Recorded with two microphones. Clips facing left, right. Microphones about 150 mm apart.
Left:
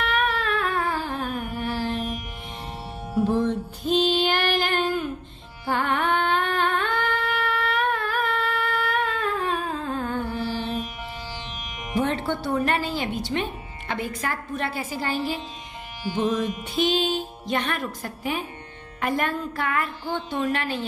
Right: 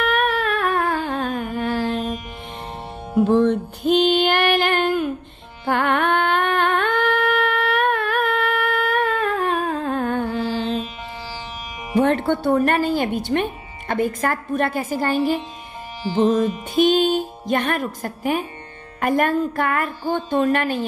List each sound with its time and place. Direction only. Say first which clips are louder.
0.0 s music: right 5 dB; 50° right (ahead or behind)
3.2 s music: right 6 dB; 65° right (ahead or behind)
5.7 s humming: right 4 dB; 65° right (ahead or behind)
12.0 s speech: right 7 dB; 55° right (ahead or behind)